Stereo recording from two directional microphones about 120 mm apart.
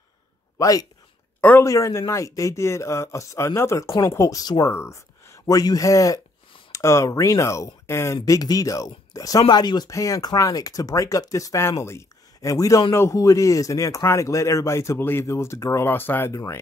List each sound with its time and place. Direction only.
0.6 s a man's voice: 30° left (ahead or behind)